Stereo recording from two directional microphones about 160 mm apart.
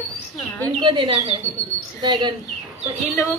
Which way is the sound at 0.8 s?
30° right (ahead or behind).